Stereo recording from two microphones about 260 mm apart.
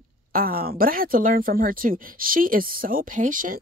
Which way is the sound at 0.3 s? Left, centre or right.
Right.